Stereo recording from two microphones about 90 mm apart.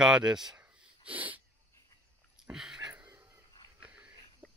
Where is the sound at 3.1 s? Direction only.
30° right (ahead or behind).